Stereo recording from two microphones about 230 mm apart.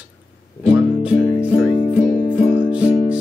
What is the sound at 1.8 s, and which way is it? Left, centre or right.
Music, left.